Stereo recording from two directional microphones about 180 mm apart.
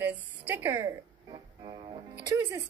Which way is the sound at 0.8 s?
25° right (ahead or behind).